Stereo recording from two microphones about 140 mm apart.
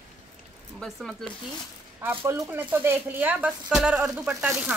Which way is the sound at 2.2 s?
20° right (ahead or behind).